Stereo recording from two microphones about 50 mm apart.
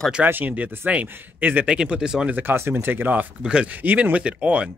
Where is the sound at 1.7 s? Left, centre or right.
Centre.